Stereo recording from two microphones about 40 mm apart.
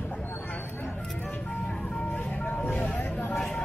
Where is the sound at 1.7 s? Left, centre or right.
Left.